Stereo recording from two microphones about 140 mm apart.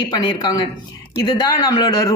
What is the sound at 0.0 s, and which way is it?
Speech, 30° left (ahead or behind).